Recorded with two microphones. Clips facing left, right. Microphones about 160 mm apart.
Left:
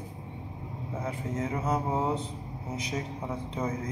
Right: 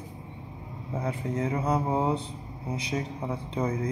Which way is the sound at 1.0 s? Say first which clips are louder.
Right 3 dB; 35° right (ahead or behind).